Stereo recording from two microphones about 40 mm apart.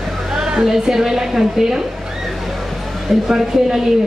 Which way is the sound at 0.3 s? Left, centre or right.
Centre.